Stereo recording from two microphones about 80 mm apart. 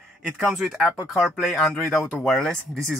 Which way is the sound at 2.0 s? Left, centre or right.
Left.